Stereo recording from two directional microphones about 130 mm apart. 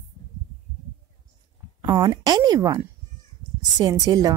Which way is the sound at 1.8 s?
35° right (ahead or behind).